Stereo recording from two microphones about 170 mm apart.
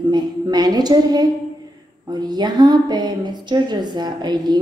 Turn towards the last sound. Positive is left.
turn(degrees=-25)  # may be behind; listen again after turning